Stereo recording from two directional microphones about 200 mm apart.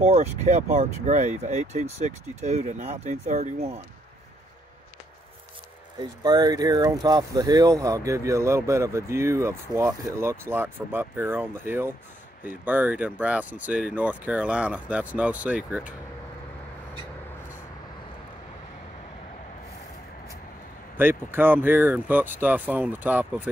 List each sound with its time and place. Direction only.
0.0 s speech: 35° right (ahead or behind)
5.9 s speech: 20° right (ahead or behind)
21.0 s speech: 10° right (ahead or behind)